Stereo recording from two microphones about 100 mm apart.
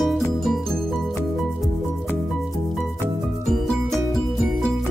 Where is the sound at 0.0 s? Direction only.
Centre (ahead or behind).